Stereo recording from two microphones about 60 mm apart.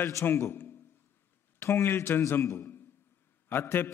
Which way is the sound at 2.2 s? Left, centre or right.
Left.